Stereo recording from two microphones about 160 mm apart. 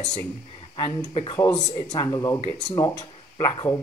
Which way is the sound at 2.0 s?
20° left (ahead or behind).